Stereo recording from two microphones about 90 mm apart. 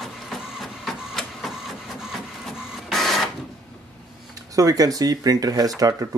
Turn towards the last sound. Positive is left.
turn(degrees=-40)  # may be behind; listen again after turning